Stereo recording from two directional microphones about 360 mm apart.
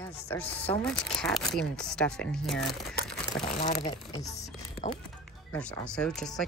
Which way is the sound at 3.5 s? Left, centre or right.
Centre.